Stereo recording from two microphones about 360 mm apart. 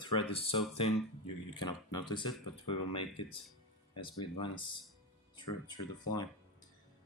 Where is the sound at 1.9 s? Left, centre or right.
Centre.